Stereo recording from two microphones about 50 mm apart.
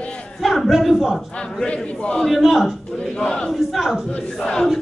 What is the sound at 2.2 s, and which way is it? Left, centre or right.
Speech, centre.